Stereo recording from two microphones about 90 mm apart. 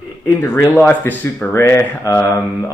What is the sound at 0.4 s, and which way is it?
Speech, 25° left (ahead or behind).